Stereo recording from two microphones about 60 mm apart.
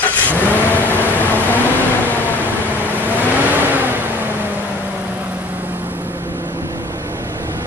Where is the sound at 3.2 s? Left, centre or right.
Right.